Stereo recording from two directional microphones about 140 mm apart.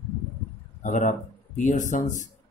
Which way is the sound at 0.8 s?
60° left (ahead or behind).